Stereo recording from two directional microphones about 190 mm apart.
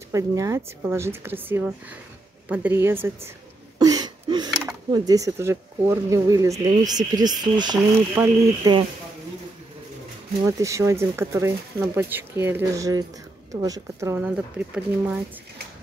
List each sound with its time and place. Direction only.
0.1 s speech: 15° right (ahead or behind)
10.4 s speech: 15° right (ahead or behind)